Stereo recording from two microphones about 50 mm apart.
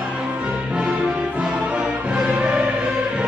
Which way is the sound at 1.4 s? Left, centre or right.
Centre.